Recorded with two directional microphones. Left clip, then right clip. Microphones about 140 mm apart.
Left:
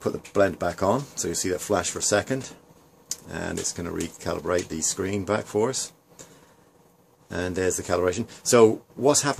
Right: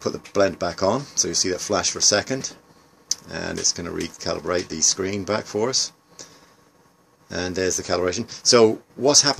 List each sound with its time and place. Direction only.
0.0 s speech: 20° right (ahead or behind)
7.2 s speech: 20° right (ahead or behind)